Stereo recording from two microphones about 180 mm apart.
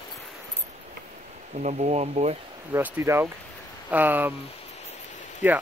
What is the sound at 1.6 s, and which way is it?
Speech, 40° right (ahead or behind).